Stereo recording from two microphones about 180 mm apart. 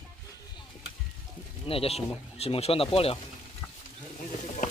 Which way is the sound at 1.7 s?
35° left (ahead or behind).